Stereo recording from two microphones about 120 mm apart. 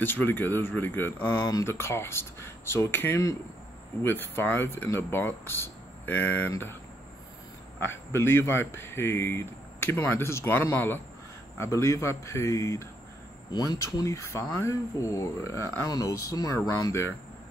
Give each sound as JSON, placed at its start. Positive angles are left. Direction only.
{"t": 0.0, "sound": "speech", "side_deg": 15}
{"t": 7.8, "sound": "speech", "side_deg": 20}
{"t": 13.5, "sound": "speech", "side_deg": 35}